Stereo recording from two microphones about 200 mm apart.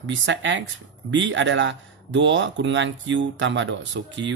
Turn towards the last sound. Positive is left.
turn(degrees=-65)  # may be behind; listen again after turning